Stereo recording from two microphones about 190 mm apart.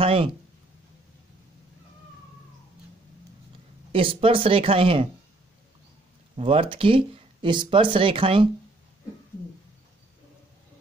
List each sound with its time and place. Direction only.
0.0 s speech: 30° right (ahead or behind)
3.9 s speech: 30° right (ahead or behind)
6.3 s speech: 30° right (ahead or behind)